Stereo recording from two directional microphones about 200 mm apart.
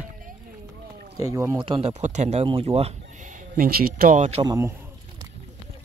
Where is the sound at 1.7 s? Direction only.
30° right (ahead or behind).